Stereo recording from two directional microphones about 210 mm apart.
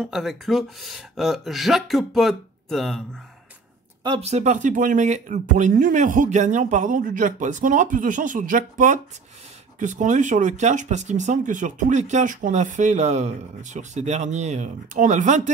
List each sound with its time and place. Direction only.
0.0 s speech: centre (ahead or behind)
4.0 s speech: 25° right (ahead or behind)